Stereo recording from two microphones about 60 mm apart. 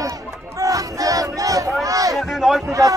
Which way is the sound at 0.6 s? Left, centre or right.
Right.